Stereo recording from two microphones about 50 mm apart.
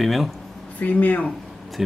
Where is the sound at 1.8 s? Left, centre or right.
Centre.